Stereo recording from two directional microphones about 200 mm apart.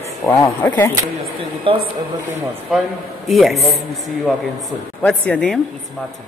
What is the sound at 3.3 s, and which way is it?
A man's voice, centre (ahead or behind).